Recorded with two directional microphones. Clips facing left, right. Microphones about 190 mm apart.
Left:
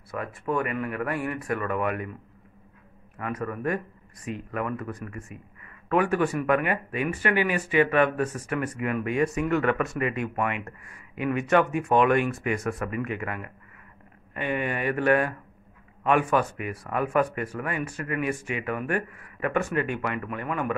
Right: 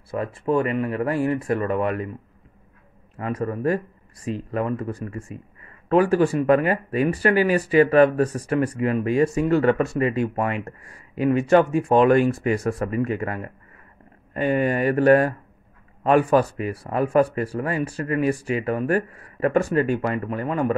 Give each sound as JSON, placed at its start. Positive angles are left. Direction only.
{"t": 0.1, "sound": "speech", "side_deg": -30}
{"t": 3.2, "sound": "speech", "side_deg": -30}